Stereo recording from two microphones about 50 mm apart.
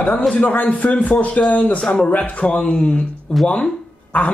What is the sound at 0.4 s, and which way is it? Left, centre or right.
Speech, left.